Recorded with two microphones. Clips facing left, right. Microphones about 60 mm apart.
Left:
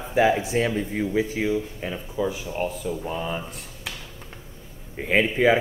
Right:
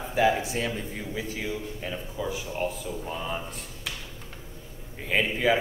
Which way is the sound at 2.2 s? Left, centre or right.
Centre.